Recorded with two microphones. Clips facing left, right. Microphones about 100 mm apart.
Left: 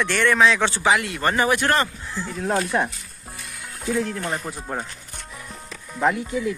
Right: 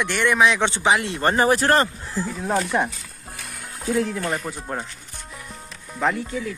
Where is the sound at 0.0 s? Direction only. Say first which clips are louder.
Left 1 dB; 15° right (ahead or behind); by 2.2 s 40° right (ahead or behind).